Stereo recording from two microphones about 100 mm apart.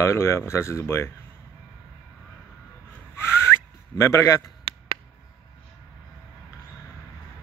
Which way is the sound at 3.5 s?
30° left (ahead or behind).